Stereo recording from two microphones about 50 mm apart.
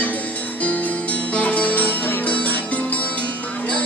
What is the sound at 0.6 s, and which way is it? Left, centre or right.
Music, left.